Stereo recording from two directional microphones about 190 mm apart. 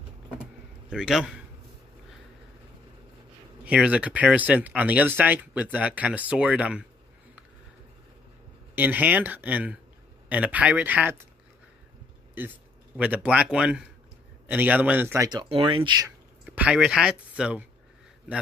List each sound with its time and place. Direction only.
0.8 s a man's voice: 5° right (ahead or behind)
3.6 s speech: 5° right (ahead or behind)
8.7 s speech: 10° right (ahead or behind)
12.4 s speech: 10° right (ahead or behind)
15.2 s speech: 25° right (ahead or behind)
16.4 s speech: 5° right (ahead or behind)